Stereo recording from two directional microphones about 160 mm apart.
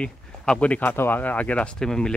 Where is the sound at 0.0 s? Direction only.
5° left (ahead or behind).